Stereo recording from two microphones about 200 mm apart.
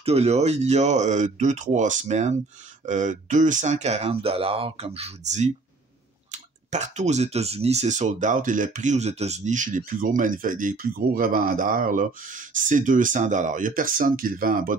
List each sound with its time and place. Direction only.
0.0 s speech: 30° right (ahead or behind)
6.7 s speech: 35° right (ahead or behind)